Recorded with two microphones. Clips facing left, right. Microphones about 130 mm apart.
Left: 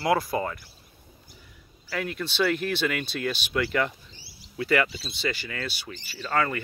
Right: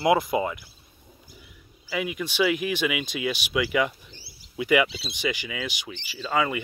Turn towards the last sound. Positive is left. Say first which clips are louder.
# right 1 dB
turn(degrees=-10)  # may be behind; listen again after turning